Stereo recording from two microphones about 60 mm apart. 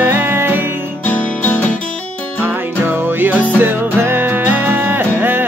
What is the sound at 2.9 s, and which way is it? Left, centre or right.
Music, right.